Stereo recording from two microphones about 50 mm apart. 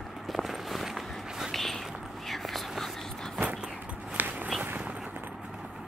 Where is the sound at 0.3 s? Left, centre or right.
Centre.